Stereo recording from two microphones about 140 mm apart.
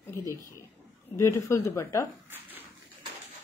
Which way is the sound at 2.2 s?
15° right (ahead or behind).